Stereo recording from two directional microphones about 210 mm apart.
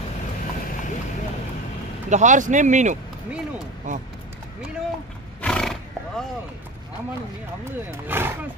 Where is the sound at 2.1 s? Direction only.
35° right (ahead or behind).